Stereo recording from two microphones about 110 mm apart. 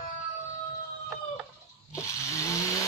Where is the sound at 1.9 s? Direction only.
30° left (ahead or behind).